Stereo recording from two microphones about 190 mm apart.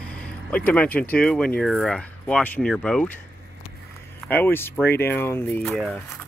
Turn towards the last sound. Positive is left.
turn(degrees=0)  # may be behind; listen again after turning